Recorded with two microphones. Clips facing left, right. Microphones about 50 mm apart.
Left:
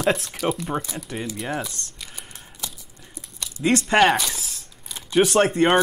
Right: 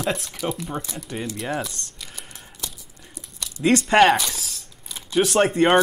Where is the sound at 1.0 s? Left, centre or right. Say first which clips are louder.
Right 1 dB; centre.